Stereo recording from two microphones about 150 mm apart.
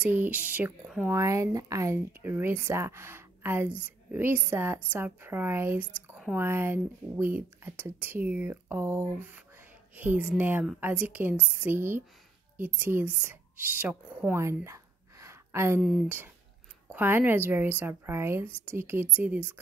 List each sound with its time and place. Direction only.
0.0 s speech: 10° right (ahead or behind)
1.0 s speech: 20° right (ahead or behind)
16.9 s speech: 15° right (ahead or behind)